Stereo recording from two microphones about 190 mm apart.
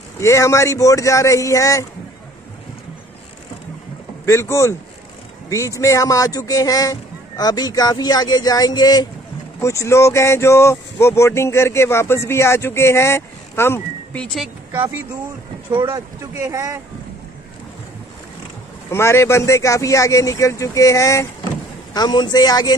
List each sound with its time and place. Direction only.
0.2 s speech: 15° left (ahead or behind)
4.3 s speech: 15° left (ahead or behind)
14.8 s speech: 10° right (ahead or behind)
18.9 s speech: 15° left (ahead or behind)